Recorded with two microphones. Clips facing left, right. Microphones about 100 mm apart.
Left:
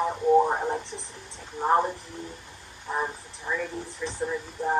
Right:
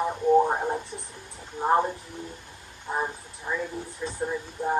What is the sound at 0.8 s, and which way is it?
Speech, 90° left.